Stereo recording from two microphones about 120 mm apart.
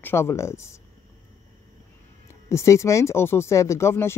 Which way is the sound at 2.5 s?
25° left (ahead or behind).